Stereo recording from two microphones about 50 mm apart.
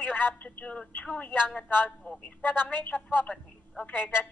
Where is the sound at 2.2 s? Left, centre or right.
Left.